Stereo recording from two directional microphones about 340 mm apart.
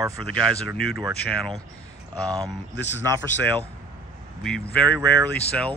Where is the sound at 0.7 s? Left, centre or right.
Left.